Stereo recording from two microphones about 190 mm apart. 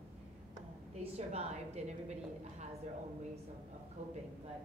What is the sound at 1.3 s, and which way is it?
Speech, 35° right (ahead or behind).